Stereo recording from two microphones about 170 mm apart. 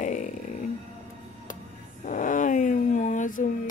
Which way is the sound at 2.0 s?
50° left (ahead or behind).